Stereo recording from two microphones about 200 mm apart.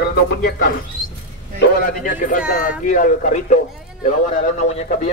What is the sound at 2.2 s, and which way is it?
A man's voice, 40° left (ahead or behind).